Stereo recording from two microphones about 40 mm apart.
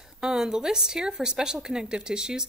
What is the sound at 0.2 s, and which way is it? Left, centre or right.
Speech, centre.